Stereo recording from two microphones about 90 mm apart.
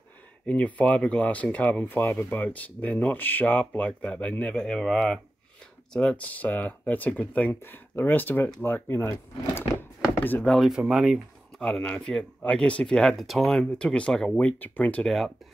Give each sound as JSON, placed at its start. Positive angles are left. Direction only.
{"t": 0.5, "sound": "speech", "side_deg": 15}
{"t": 10.5, "sound": "speech", "side_deg": 0}
{"t": 11.6, "sound": "speech", "side_deg": 10}
{"t": 15.0, "sound": "speech", "side_deg": 5}